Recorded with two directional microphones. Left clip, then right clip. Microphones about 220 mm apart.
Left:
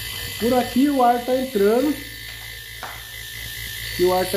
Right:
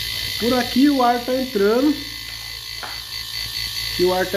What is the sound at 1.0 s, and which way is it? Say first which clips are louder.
Speech: even; 5° right (ahead or behind).